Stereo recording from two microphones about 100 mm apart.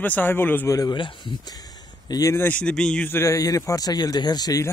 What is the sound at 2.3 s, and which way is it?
Speech, 15° left (ahead or behind).